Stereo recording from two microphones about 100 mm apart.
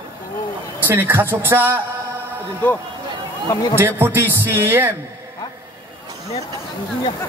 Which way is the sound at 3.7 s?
20° right (ahead or behind).